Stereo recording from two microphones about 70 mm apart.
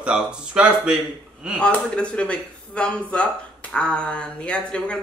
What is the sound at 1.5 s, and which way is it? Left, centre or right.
Speech, centre.